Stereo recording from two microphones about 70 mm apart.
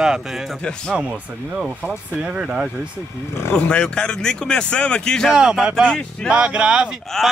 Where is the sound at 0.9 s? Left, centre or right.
Centre.